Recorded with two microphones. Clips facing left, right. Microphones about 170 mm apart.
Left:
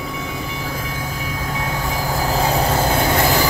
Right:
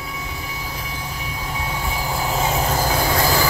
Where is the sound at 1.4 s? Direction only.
45° left (ahead or behind).